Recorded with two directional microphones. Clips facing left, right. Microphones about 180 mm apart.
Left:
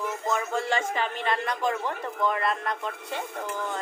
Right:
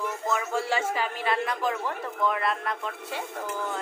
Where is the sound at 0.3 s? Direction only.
5° right (ahead or behind).